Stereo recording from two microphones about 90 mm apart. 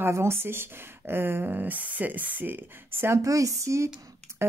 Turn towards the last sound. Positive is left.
turn(degrees=-30)  # may be behind; listen again after turning